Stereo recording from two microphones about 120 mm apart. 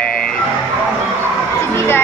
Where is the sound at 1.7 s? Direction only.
20° left (ahead or behind).